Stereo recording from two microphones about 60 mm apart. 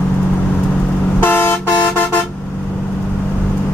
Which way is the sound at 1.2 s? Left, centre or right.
Left.